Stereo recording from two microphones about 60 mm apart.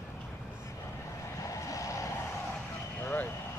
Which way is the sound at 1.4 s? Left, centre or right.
Left.